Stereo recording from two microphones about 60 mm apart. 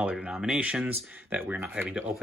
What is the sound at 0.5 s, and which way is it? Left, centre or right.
Speech, right.